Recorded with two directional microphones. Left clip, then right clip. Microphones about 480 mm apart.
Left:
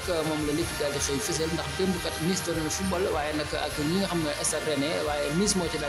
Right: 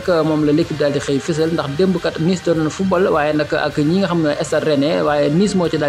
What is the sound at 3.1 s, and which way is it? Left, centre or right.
Speech, left.